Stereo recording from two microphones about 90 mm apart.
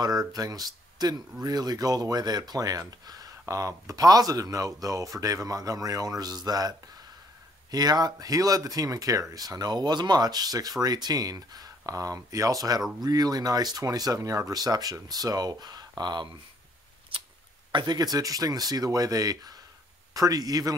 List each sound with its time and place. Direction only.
0.0 s speech: 45° right (ahead or behind)
7.7 s speech: 50° right (ahead or behind)
17.6 s speech: 45° right (ahead or behind)